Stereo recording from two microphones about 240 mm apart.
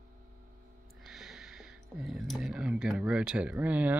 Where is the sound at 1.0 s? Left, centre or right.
Centre.